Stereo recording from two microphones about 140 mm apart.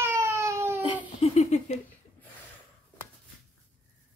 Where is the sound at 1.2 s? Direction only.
50° left (ahead or behind).